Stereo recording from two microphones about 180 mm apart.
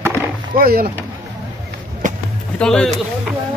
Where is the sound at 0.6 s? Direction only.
55° right (ahead or behind).